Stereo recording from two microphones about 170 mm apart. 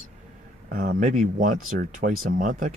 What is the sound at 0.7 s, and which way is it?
Speech, 55° right (ahead or behind).